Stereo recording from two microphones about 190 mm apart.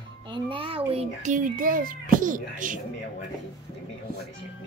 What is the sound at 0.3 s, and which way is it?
A child's voice, 25° right (ahead or behind).